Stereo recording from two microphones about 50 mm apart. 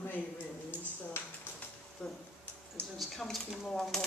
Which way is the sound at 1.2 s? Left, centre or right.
Left.